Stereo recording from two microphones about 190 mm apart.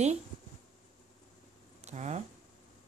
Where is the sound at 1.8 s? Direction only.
35° right (ahead or behind).